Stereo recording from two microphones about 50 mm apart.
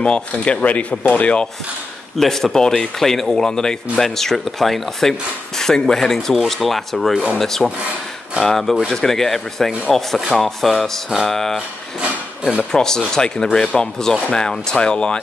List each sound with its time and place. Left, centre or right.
0.0 s speech: centre
2.1 s speech: centre
12.7 s speech: centre